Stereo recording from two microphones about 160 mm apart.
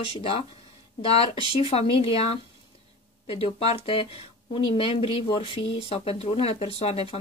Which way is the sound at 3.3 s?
35° left (ahead or behind).